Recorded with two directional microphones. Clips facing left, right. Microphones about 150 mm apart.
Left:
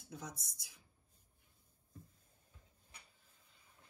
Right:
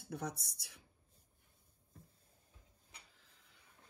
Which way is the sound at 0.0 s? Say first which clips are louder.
Right 6 dB; 65° right (ahead or behind).